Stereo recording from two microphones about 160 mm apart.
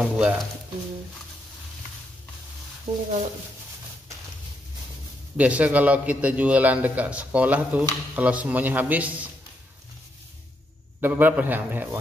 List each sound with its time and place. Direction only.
0.0 s speech: 5° right (ahead or behind)
2.9 s speech: 35° right (ahead or behind)
5.4 s a man's voice: 10° right (ahead or behind)
11.0 s a man's voice: 10° right (ahead or behind)